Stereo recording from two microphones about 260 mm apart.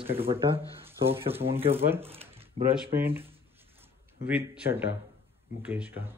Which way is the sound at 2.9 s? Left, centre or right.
Centre.